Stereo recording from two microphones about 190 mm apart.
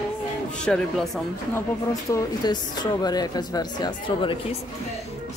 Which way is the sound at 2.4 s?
20° left (ahead or behind).